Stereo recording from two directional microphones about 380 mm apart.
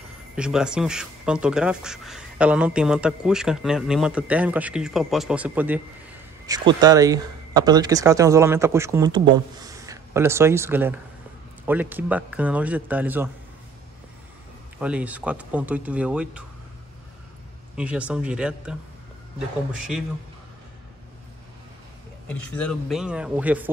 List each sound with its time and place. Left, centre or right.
0.4 s speech: centre
14.8 s speech: centre
17.7 s speech: centre
22.3 s speech: centre